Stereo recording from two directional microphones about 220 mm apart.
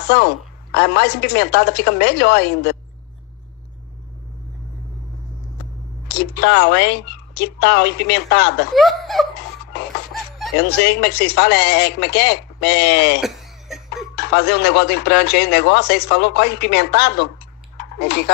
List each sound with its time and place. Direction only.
0.0 s speech: 50° left (ahead or behind)
6.0 s speech: 50° left (ahead or behind)
8.7 s speech: centre (ahead or behind)
9.7 s music: 50° left (ahead or behind)
10.6 s speech: 50° left (ahead or behind)
13.2 s cough: centre (ahead or behind)
14.1 s speech: 50° left (ahead or behind)
17.7 s a sound: 50° left (ahead or behind)